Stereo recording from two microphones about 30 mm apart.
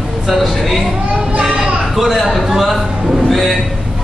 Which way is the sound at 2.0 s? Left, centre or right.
Centre.